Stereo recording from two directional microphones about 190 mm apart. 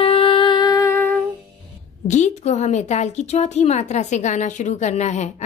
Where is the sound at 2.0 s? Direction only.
40° left (ahead or behind).